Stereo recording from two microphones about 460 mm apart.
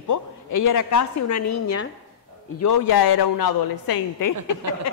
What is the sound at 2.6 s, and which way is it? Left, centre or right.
A man's voice, left.